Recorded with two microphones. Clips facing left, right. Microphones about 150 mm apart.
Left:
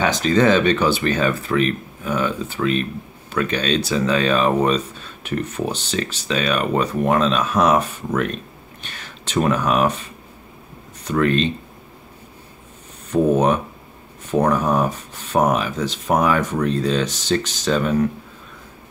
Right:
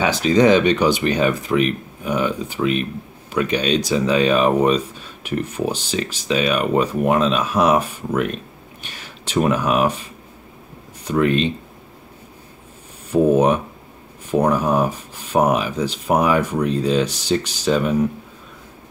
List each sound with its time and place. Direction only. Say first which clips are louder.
0.0 s speech: right 2 dB; 10° right (ahead or behind)
13.1 s speech: right 2 dB; 10° right (ahead or behind)